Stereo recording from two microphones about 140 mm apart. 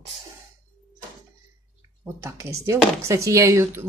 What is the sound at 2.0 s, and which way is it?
Speech, 20° right (ahead or behind).